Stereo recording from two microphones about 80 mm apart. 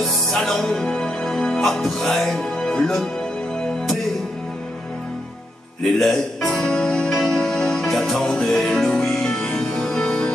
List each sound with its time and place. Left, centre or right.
0.3 s music: centre
5.9 s music: centre